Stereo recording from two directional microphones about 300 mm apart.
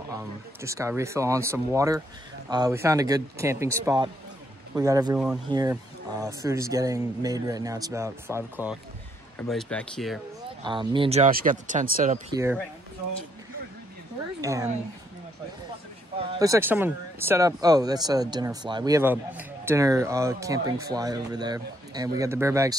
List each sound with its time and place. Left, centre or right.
0.1 s speech: centre
10.6 s speech: centre
14.4 s speech: centre
16.2 s speech: centre